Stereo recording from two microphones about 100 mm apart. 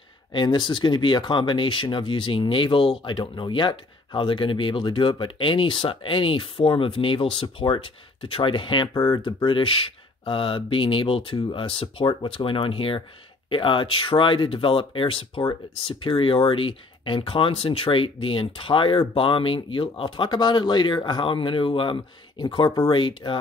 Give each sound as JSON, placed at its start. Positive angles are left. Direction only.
{"t": 0.3, "sound": "speech", "side_deg": 50}